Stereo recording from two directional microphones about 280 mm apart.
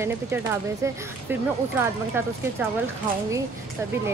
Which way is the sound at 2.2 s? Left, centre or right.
Centre.